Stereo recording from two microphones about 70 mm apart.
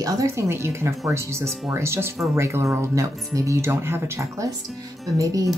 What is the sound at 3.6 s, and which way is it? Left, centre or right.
Speech, right.